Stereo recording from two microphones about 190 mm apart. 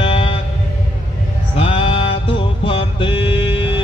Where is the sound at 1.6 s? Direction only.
30° left (ahead or behind).